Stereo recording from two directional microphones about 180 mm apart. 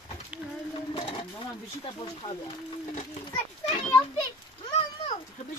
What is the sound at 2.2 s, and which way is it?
Speech, 30° left (ahead or behind).